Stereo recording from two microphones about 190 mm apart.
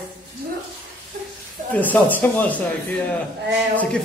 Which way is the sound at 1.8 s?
10° left (ahead or behind).